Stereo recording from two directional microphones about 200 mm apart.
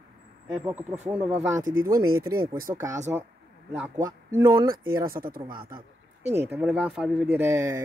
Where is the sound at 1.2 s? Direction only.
15° right (ahead or behind).